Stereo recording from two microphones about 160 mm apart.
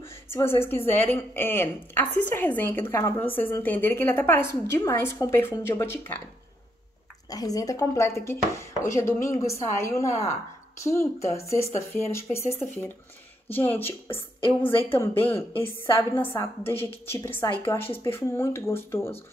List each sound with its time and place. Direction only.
0.0 s speech: 15° left (ahead or behind)
7.2 s speech: 20° left (ahead or behind)